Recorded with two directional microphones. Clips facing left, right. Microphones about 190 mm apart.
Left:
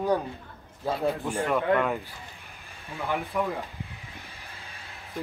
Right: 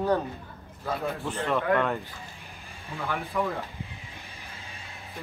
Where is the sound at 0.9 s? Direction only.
35° left (ahead or behind).